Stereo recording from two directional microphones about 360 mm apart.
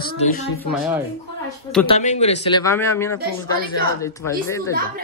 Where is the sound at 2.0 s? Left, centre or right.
Centre.